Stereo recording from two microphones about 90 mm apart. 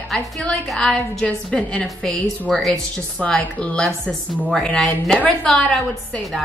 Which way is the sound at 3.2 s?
15° left (ahead or behind).